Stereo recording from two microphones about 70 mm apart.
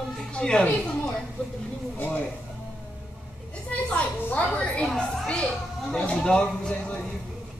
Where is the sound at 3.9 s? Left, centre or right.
Centre.